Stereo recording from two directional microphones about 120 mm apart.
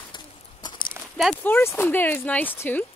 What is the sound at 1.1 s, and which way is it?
Speech, centre (ahead or behind).